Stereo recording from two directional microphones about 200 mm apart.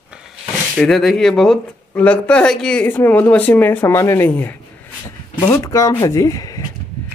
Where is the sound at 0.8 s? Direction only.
Centre (ahead or behind); by 6.6 s 15° left (ahead or behind).